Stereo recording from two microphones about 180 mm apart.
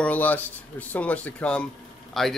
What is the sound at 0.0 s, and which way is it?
Speech, 10° left (ahead or behind).